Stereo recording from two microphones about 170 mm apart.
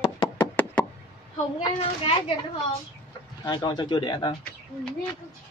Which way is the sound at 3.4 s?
25° left (ahead or behind).